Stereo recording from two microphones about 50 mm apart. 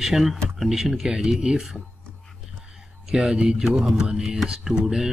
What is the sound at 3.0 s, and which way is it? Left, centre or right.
A man's voice, centre.